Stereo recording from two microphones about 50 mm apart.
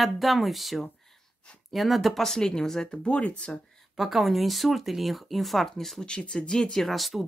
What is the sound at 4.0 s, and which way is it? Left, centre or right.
Speech, centre.